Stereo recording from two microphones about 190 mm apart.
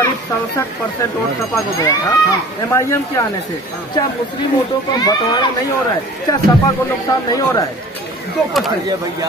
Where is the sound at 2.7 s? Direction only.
15° left (ahead or behind).